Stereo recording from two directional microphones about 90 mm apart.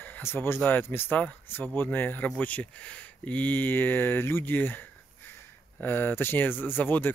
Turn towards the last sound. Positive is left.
turn(degrees=20)  # may be behind; listen again after turning